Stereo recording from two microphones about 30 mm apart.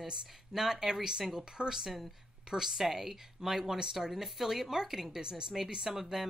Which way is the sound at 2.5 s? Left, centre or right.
Centre.